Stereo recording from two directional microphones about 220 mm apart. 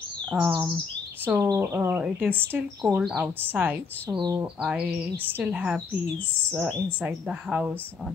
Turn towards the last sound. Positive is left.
turn(degrees=-5)  # may be behind; listen again after turning